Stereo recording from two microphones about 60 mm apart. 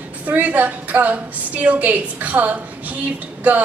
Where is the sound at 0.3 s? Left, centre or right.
Right.